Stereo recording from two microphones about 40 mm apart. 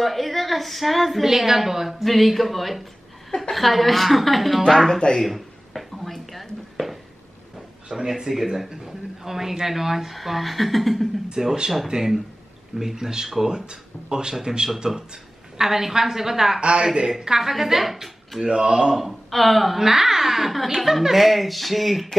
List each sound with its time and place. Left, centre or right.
0.0 s a woman's voice: centre
2.0 s a woman's voice: centre
4.6 s speech: centre
5.2 s a sound: centre
7.9 s speech: centre
11.2 s speech: centre
16.6 s speech: right
17.2 s speech: centre
18.4 s speech: right
18.9 s a woman's voice: centre